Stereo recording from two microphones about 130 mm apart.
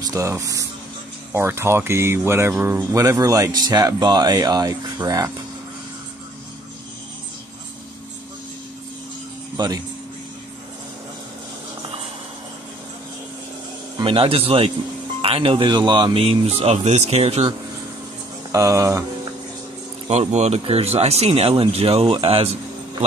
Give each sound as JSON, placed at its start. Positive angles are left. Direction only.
{"t": 0.1, "sound": "speech", "side_deg": -25}
{"t": 9.6, "sound": "speech", "side_deg": -35}
{"t": 13.9, "sound": "speech", "side_deg": -40}
{"t": 18.5, "sound": "speech", "side_deg": -25}
{"t": 20.1, "sound": "speech", "side_deg": -60}